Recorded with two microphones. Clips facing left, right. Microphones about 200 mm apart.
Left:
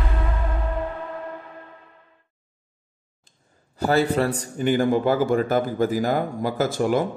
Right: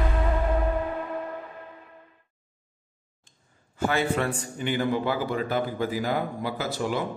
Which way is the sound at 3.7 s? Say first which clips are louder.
Left 5 dB; 40° left (ahead or behind).